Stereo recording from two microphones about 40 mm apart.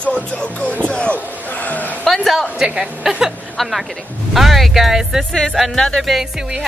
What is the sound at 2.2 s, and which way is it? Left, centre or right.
Speech, centre.